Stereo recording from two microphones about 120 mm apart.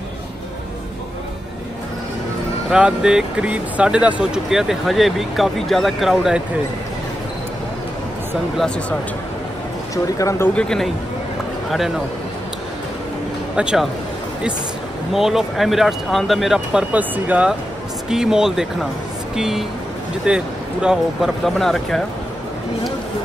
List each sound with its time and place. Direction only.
2.7 s speech: 5° right (ahead or behind)
10.0 s speech: 25° left (ahead or behind)
10.5 s speech: 5° left (ahead or behind)
13.6 s speech: 5° right (ahead or behind)
15.1 s speech: centre (ahead or behind)